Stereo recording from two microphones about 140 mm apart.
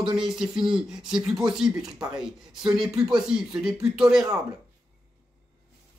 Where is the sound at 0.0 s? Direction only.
35° right (ahead or behind).